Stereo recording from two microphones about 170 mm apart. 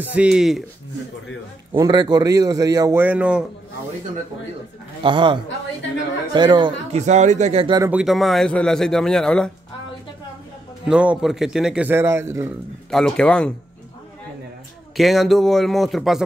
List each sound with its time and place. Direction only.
0.0 s a man's voice: 10° right (ahead or behind)
1.7 s a man's voice: 25° right (ahead or behind)
3.0 s a man's voice: 10° right (ahead or behind)
5.0 s a man's voice: 30° right (ahead or behind)
7.0 s speech: 45° right (ahead or behind)
7.9 s a man's voice: centre (ahead or behind)
10.9 s a man's voice: 5° right (ahead or behind)
12.9 s a man's voice: 5° left (ahead or behind)
15.0 s a man's voice: centre (ahead or behind)